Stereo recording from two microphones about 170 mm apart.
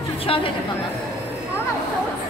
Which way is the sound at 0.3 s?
35° left (ahead or behind).